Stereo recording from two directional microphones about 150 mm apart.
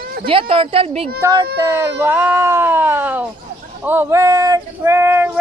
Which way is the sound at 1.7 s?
15° right (ahead or behind).